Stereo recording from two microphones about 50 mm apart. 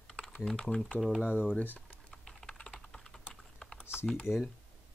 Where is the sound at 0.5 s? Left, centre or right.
Centre.